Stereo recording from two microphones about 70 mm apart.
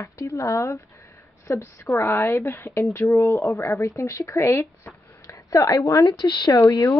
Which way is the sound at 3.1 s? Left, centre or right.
Left.